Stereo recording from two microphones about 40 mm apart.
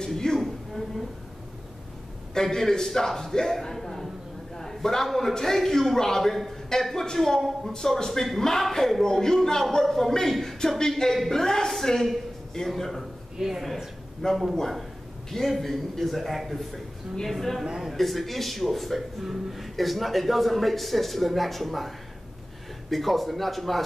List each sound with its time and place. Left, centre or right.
0.0 s a sound: centre
2.3 s a man's voice: centre
7.7 s a man's voice: centre
13.4 s speech: centre